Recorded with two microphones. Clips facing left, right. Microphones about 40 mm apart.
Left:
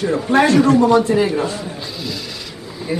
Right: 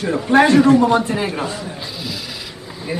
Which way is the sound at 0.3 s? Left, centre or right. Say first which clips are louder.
Right 2 dB; right.